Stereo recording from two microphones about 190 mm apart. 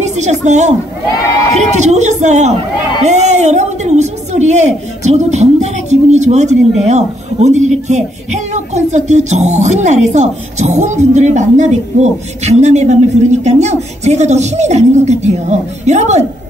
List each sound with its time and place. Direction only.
0.0 s a woman's voice: 40° right (ahead or behind)
1.8 s a woman's voice: 35° right (ahead or behind)